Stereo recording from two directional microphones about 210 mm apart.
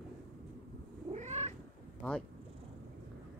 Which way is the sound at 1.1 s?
30° right (ahead or behind).